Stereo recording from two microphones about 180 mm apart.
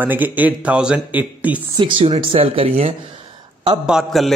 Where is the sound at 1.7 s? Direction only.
30° right (ahead or behind).